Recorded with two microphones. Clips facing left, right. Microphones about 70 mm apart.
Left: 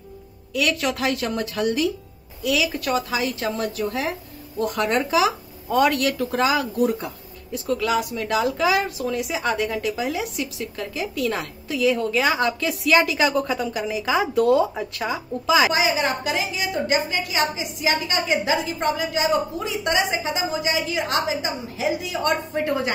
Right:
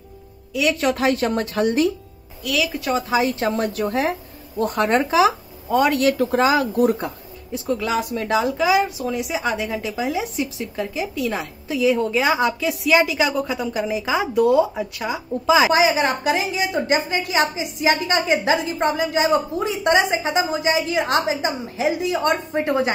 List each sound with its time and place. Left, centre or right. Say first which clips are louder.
0.5 s a woman's voice: right 2 dB; centre
0.7 s a woman's voice: right 4 dB; right
2.4 s a woman's voice: even; centre
2.8 s a woman's voice: right 3 dB; right
7.5 s speech: even; right
8.5 s a woman's voice: right 3 dB; centre
13.7 s speech: right 3 dB; right
14.0 s a woman's voice: even; centre
15.4 s speech: right 2 dB; right
15.7 s a woman's voice: right 4 dB; right
22.3 s speech: right 2 dB; right